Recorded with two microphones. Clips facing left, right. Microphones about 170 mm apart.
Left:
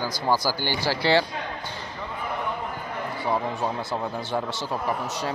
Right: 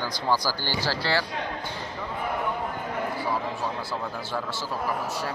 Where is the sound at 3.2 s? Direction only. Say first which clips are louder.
Left 3 dB; 20° left (ahead or behind).